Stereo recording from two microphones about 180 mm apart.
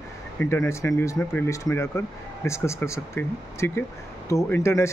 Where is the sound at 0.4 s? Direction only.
15° left (ahead or behind).